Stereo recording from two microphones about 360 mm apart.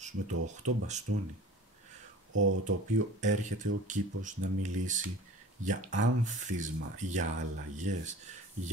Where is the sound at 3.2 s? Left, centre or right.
Centre.